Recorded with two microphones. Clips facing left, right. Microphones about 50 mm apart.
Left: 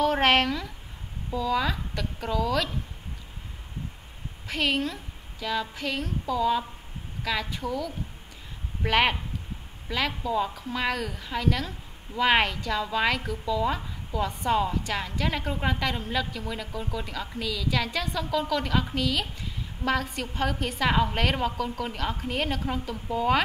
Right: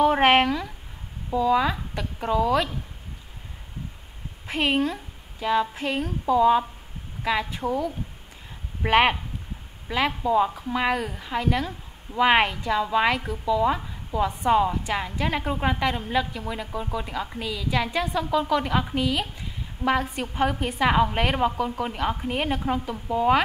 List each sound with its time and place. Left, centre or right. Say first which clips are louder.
0.0 s speech: right 4 dB; centre
4.5 s a woman's voice: right 4 dB; right